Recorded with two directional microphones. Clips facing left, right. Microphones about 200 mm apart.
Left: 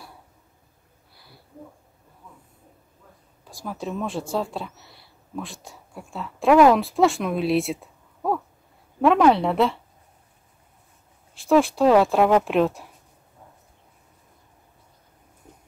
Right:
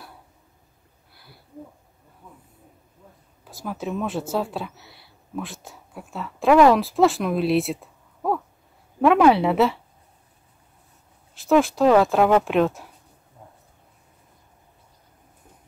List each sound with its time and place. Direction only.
3.6 s speech: 5° right (ahead or behind)
11.3 s speech: centre (ahead or behind)